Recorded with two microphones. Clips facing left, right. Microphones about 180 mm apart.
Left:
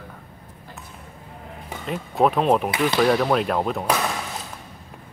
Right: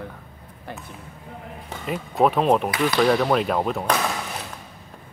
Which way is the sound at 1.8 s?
Centre (ahead or behind).